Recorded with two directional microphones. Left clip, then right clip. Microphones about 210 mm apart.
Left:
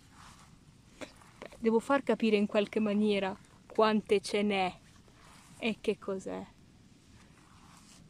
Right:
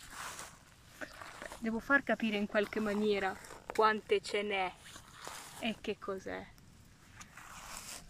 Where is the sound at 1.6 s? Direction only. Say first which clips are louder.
Left 3 dB; 20° left (ahead or behind).